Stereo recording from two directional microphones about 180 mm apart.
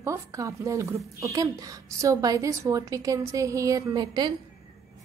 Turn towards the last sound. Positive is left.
turn(degrees=-25)  # may be behind; listen again after turning